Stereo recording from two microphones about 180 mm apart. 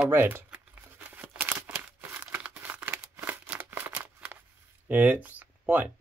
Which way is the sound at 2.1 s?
10° right (ahead or behind).